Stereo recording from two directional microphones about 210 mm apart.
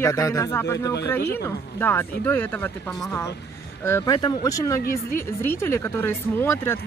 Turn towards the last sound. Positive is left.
turn(degrees=10)  # may be behind; listen again after turning